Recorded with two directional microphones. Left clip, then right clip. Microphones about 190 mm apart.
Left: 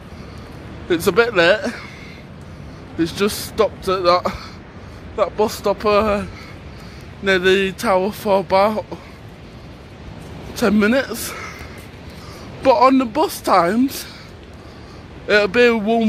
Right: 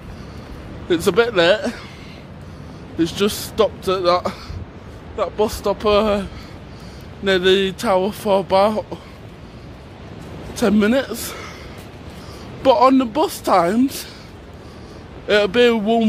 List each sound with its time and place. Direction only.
0.8 s a woman's voice: 5° right (ahead or behind)
3.0 s speech: 10° right (ahead or behind)
4.0 s a woman's voice: 5° left (ahead or behind)
5.1 s speech: 25° left (ahead or behind)
5.8 s a woman's voice: 5° right (ahead or behind)
7.2 s speech: 5° right (ahead or behind)
10.5 s a man's voice: 5° right (ahead or behind)
12.6 s a woman's voice: 5° right (ahead or behind)
15.2 s a woman's voice: 5° right (ahead or behind)